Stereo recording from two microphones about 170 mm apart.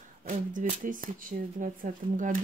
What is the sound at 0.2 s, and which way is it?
Speech, 50° right (ahead or behind).